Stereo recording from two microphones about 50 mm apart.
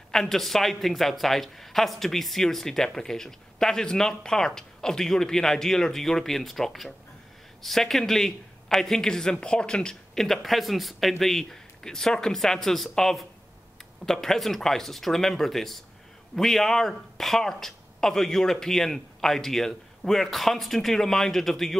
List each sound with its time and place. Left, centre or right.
0.1 s speech: centre
10.2 s a man's voice: centre